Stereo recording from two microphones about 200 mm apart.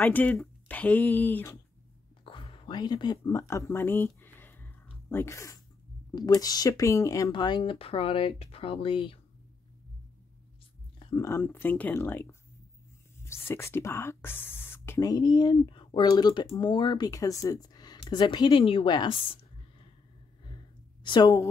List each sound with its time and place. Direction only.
0.0 s speech: 10° left (ahead or behind)
2.2 s a sound: 25° left (ahead or behind)
6.1 s speech: 20° left (ahead or behind)
11.0 s a sound: 25° left (ahead or behind)
11.2 s speech: 10° left (ahead or behind)
20.4 s sigh: 25° left (ahead or behind)